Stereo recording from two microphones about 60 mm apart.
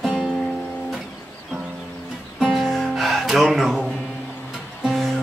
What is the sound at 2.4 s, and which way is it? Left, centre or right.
Music, centre.